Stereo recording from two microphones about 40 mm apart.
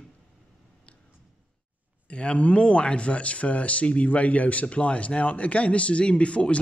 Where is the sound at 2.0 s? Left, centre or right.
Left.